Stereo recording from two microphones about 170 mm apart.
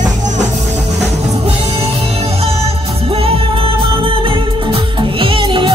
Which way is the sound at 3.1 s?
35° right (ahead or behind).